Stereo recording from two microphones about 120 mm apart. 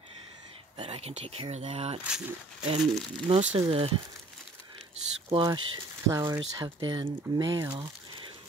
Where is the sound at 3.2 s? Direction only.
55° right (ahead or behind).